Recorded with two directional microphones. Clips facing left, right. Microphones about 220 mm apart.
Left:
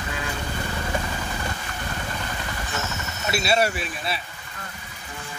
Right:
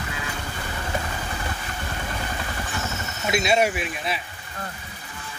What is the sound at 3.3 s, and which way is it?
Speech, 15° right (ahead or behind).